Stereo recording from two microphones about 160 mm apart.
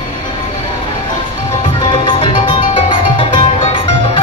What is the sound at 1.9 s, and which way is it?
Music, 30° left (ahead or behind).